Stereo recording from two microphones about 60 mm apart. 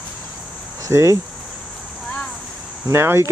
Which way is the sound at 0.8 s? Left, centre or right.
Right.